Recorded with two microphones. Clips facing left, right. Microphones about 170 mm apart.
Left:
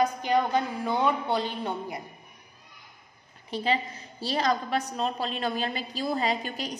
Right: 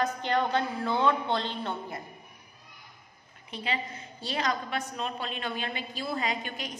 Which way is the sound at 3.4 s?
35° left (ahead or behind).